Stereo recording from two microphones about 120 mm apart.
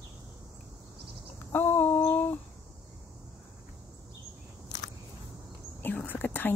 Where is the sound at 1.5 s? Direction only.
15° left (ahead or behind).